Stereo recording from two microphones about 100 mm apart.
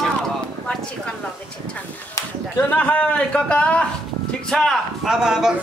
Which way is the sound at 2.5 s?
20° left (ahead or behind).